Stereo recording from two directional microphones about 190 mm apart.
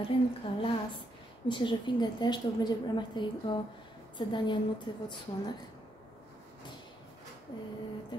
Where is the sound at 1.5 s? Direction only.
25° left (ahead or behind).